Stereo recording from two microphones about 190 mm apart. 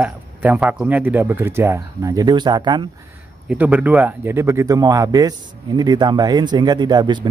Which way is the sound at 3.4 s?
5° right (ahead or behind).